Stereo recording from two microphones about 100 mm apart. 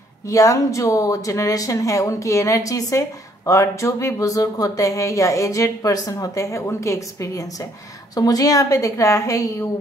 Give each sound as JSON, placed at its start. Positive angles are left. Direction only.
{"t": 0.3, "sound": "speech", "side_deg": 35}